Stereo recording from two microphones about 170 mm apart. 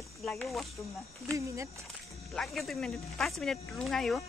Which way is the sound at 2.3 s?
Centre (ahead or behind).